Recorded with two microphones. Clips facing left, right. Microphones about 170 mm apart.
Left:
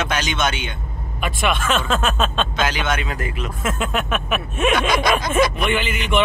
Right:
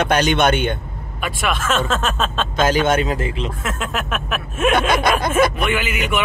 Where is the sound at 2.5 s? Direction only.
45° right (ahead or behind).